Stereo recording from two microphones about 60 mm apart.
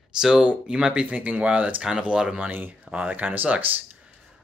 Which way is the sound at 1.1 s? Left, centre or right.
Right.